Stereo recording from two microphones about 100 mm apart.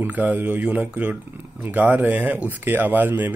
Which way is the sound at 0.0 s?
15° right (ahead or behind).